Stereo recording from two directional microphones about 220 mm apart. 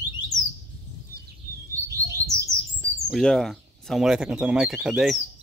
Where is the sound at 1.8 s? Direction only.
15° right (ahead or behind).